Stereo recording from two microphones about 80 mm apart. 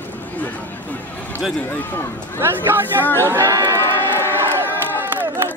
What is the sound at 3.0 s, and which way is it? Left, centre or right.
Speech, left.